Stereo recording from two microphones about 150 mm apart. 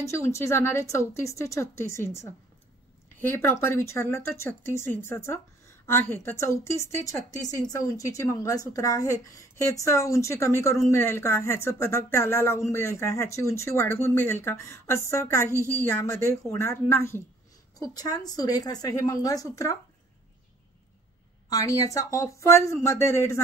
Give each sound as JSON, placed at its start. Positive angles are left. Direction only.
{"t": 0.0, "sound": "a woman's voice", "side_deg": 20}
{"t": 21.5, "sound": "a woman's voice", "side_deg": 25}